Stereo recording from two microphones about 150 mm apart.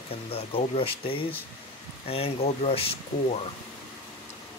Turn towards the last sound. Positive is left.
turn(degrees=40)  # may be behind; listen again after turning